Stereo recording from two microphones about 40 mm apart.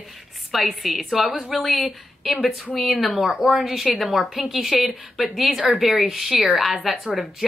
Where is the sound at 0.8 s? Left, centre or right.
Centre.